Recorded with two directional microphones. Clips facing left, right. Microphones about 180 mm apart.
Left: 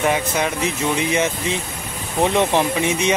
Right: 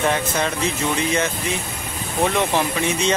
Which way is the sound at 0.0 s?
10° left (ahead or behind).